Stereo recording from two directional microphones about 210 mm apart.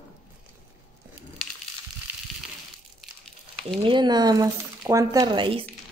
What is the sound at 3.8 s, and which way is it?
Speech, 20° right (ahead or behind).